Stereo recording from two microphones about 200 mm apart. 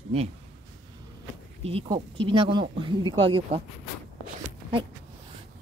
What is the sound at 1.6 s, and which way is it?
Speech, 30° right (ahead or behind).